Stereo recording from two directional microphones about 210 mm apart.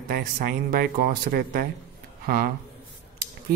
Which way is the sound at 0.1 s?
45° right (ahead or behind).